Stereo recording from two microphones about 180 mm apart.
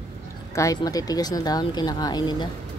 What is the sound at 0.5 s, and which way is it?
Speech, 20° left (ahead or behind).